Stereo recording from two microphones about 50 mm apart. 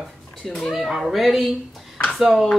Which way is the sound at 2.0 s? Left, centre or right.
Centre.